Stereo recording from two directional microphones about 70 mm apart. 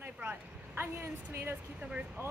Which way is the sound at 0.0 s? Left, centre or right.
Right.